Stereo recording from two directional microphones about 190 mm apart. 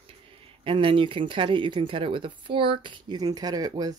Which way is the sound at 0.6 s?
25° right (ahead or behind).